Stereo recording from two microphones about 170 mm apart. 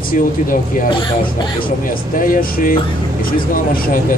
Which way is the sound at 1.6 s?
55° left (ahead or behind).